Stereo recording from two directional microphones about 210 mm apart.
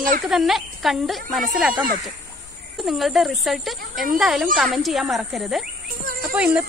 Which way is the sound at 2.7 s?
Centre (ahead or behind).